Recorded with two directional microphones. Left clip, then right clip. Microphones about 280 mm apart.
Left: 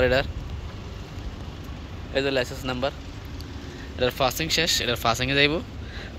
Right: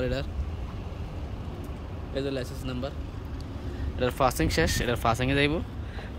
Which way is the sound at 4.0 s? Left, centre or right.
Centre.